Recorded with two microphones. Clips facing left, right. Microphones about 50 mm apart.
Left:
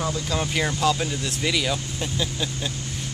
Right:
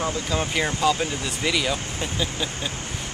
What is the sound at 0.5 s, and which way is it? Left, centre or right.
Speech, centre.